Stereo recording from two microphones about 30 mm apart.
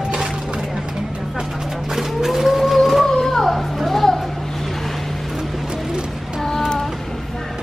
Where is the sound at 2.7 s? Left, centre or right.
Centre.